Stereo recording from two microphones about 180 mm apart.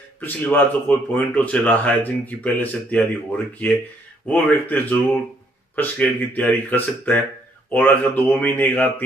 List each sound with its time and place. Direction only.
0.2 s speech: 10° left (ahead or behind)